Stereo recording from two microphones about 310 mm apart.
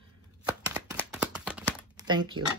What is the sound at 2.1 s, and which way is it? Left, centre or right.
Speech, centre.